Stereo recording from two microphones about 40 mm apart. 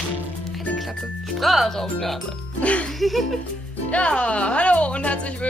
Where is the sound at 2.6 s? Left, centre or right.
Left.